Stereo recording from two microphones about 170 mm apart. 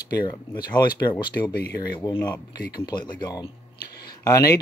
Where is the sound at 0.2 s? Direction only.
25° left (ahead or behind).